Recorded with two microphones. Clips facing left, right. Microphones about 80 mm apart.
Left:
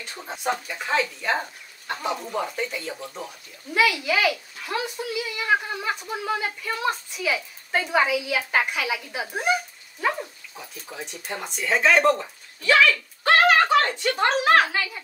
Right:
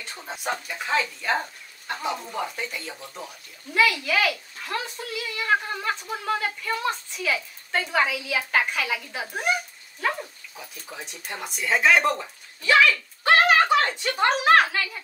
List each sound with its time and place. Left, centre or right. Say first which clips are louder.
0.0 s a child's voice: left 3 dB; centre
10.9 s speech: left 3 dB; centre
12.7 s a sound: even; centre
14.3 s a woman's voice: right 1 dB; centre